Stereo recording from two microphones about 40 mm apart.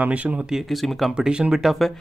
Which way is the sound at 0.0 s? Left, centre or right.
Right.